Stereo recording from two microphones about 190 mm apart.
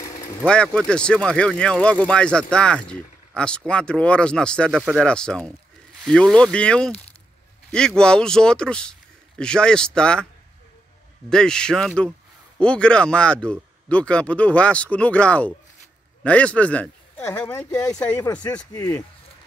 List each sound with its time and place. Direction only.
0.5 s speech: 5° left (ahead or behind)
11.2 s speech: 5° left (ahead or behind)